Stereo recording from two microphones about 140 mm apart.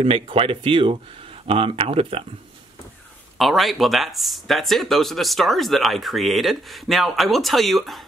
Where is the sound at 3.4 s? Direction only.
Centre (ahead or behind).